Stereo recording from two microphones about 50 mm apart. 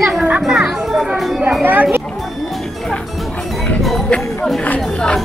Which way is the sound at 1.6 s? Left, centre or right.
Right.